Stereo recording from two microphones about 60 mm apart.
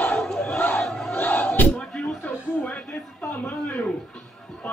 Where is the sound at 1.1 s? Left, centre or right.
Left.